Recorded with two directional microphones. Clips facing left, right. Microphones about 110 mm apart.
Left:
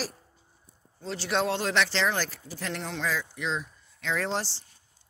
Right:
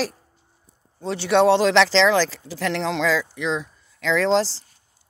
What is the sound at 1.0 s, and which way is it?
Speech, 70° right (ahead or behind).